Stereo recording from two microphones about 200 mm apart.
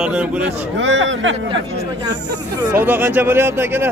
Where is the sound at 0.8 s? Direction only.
65° right (ahead or behind).